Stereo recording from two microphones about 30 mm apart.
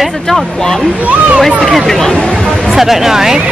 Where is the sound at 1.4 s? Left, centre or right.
Centre.